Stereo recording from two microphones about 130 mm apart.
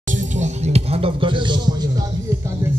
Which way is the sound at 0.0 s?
75° right (ahead or behind).